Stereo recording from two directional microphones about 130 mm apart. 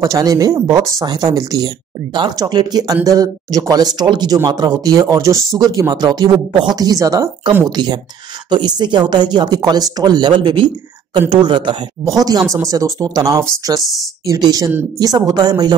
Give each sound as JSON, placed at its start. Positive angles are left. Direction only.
{"t": 0.0, "sound": "speech", "side_deg": -25}
{"t": 12.0, "sound": "speech", "side_deg": -30}
{"t": 13.7, "sound": "speech", "side_deg": 0}
{"t": 14.2, "sound": "speech", "side_deg": -30}